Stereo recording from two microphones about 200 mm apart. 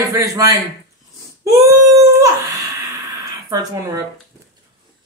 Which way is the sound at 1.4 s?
15° right (ahead or behind).